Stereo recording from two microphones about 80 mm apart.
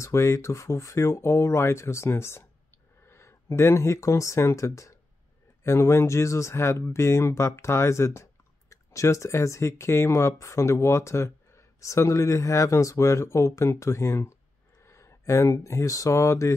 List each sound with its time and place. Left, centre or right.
0.0 s speech: left